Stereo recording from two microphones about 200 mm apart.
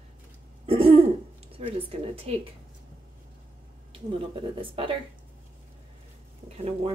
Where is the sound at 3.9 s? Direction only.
25° right (ahead or behind).